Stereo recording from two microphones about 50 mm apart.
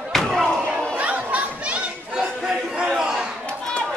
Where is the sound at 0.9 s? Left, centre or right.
Right.